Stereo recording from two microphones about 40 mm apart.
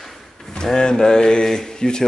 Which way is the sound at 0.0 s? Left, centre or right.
Centre.